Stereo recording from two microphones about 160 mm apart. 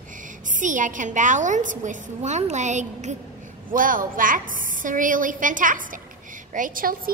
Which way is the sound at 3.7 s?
60° right (ahead or behind).